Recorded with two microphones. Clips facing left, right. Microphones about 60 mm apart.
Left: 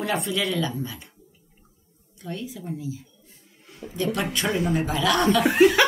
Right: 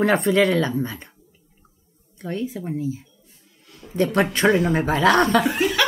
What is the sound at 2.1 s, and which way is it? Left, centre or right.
Speech, right.